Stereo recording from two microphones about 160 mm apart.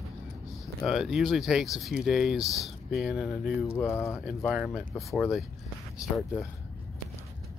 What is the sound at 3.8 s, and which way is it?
Speech, 15° left (ahead or behind).